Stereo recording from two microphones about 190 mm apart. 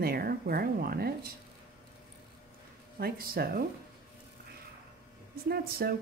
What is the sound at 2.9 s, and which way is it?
Speech, 55° right (ahead or behind).